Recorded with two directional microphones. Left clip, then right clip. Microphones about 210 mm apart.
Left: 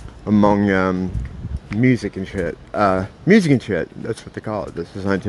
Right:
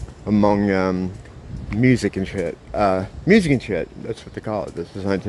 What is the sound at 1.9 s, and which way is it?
Speech, 15° right (ahead or behind).